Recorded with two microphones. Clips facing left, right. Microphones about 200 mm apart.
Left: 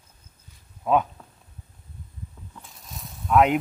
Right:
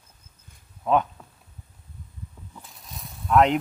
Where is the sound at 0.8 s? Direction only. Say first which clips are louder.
Even; 5° left (ahead or behind).